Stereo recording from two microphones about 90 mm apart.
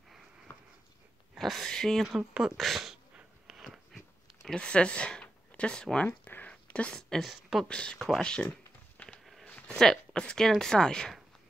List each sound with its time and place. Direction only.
0.5 s a sound: 30° left (ahead or behind)
1.3 s speech: centre (ahead or behind)
2.0 s speech: 10° right (ahead or behind)
3.2 s dog: 5° right (ahead or behind)
4.6 s speech: 10° left (ahead or behind)
6.0 s speech: 20° left (ahead or behind); by 7.6 s centre (ahead or behind)
7.6 s speech: 10° left (ahead or behind)
8.9 s walk: 10° left (ahead or behind)
9.2 s a sound: centre (ahead or behind)
9.8 s speech: 10° left (ahead or behind)